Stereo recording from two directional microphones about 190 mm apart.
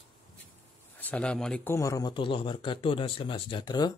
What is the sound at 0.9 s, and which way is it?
Speech, 10° left (ahead or behind).